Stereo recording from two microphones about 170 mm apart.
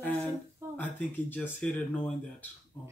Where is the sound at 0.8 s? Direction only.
10° left (ahead or behind).